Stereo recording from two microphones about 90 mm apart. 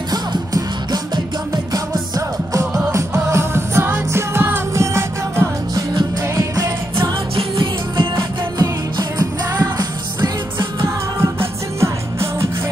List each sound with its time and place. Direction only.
0.1 s music: 45° right (ahead or behind)
3.3 s music: 30° right (ahead or behind)
5.9 s music: 45° right (ahead or behind)
7.3 s music: 70° right (ahead or behind)
8.5 s music: 45° right (ahead or behind)
11.1 s music: 30° right (ahead or behind)